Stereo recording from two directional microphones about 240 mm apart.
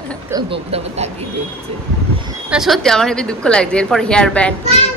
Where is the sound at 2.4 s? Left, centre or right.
Centre.